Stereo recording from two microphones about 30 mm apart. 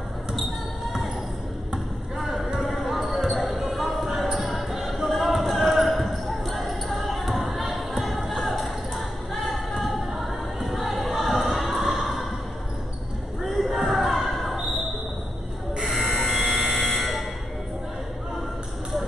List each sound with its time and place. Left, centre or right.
2.3 s a sound: centre
3.3 s basketball bounce: centre
3.7 s a sound: centre
13.4 s basketball bounce: centre
15.7 s buzzer: right
16.2 s buzzer: centre